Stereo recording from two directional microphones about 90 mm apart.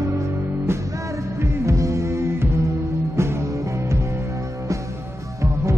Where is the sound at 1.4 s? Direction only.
35° right (ahead or behind).